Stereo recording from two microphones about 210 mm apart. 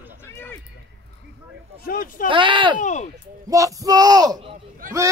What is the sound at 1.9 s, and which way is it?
Speech, 40° left (ahead or behind).